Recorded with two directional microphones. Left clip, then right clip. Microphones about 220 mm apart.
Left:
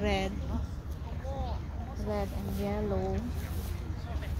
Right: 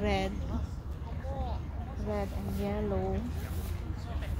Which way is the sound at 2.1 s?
Centre (ahead or behind).